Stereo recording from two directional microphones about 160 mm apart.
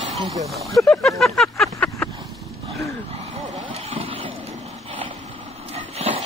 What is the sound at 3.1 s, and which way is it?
Vehicle, 45° right (ahead or behind).